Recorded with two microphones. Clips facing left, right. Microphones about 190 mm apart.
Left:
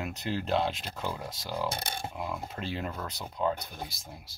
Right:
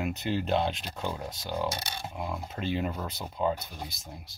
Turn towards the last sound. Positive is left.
turn(degrees=0)  # may be behind; listen again after turning